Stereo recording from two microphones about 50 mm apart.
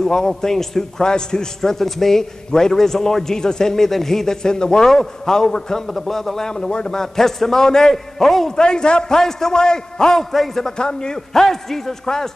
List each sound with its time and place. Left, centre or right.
0.0 s a man's voice: centre